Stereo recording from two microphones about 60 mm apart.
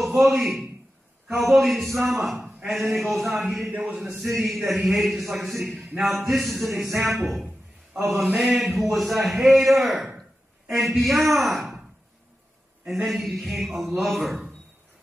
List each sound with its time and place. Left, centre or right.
0.0 s a man's voice: centre
3.7 s a man's voice: centre
4.4 s a man's voice: centre
8.0 s a man's voice: centre
12.8 s a man's voice: centre